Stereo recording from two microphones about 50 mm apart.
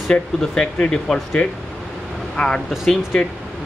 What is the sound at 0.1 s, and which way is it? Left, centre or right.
Speech, centre.